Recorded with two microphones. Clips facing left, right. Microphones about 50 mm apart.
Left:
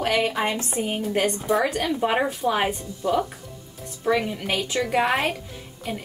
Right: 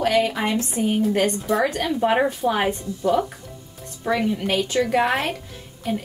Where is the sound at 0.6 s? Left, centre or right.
Left.